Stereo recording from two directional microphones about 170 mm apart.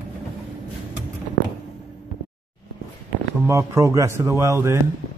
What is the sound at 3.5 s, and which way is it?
Speech, 15° right (ahead or behind).